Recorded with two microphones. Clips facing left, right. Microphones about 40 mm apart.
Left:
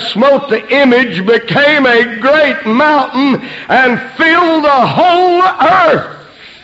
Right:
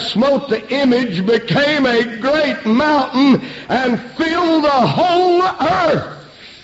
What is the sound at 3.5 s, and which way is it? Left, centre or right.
Speech, left.